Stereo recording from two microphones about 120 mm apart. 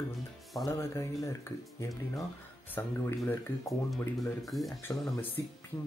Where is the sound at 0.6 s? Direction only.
25° left (ahead or behind).